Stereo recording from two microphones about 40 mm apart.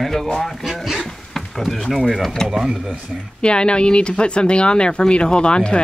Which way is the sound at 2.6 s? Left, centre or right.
Centre.